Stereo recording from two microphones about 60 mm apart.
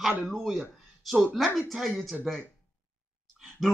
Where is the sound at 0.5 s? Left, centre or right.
Centre.